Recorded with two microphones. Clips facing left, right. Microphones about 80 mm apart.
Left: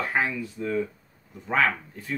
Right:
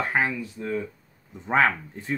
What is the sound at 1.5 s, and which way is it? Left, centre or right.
Speech, right.